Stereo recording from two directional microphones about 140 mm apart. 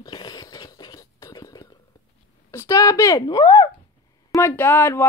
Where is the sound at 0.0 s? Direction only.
30° left (ahead or behind).